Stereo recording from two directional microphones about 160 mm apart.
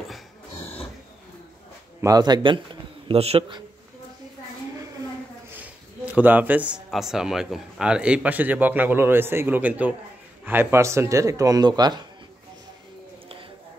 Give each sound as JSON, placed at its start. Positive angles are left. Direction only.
{"t": 2.0, "sound": "a man's voice", "side_deg": -20}
{"t": 6.1, "sound": "a man's voice", "side_deg": -10}